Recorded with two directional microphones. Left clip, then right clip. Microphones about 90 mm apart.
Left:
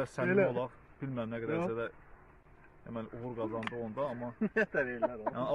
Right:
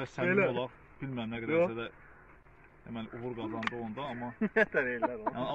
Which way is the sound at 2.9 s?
65° left (ahead or behind).